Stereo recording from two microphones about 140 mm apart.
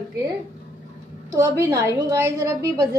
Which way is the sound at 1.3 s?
20° right (ahead or behind).